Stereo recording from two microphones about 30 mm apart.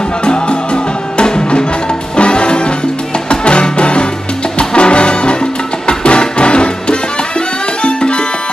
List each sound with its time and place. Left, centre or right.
0.2 s music: left